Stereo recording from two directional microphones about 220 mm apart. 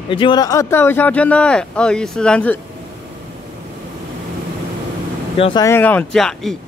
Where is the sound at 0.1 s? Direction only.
20° left (ahead or behind); by 2.6 s 5° left (ahead or behind).